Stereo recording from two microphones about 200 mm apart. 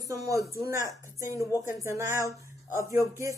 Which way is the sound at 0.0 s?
15° right (ahead or behind).